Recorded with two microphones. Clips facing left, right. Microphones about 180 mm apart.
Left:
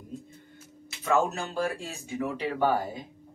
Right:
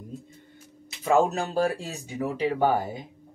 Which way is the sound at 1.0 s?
35° right (ahead or behind).